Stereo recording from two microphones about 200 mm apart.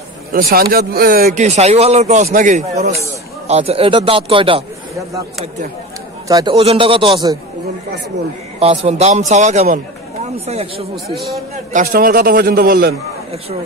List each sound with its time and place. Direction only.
0.3 s speech: 50° right (ahead or behind); by 4.6 s 25° right (ahead or behind)
6.2 s a man's voice: 20° right (ahead or behind)
6.5 s speech: 30° right (ahead or behind)
8.5 s speech: 30° right (ahead or behind)
11.1 s a man's voice: centre (ahead or behind)
11.7 s a man's voice: 45° right (ahead or behind)